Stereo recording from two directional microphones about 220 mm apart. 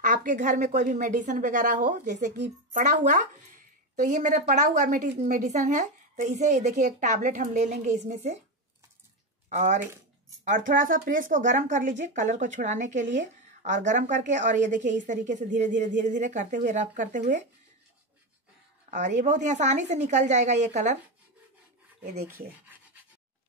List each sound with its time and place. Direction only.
0.0 s a woman's voice: 35° right (ahead or behind)
9.5 s a woman's voice: 35° right (ahead or behind)
18.9 s a woman's voice: 35° right (ahead or behind)